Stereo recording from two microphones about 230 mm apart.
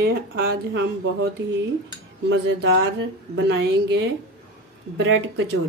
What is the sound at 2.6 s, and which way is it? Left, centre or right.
Speech, right.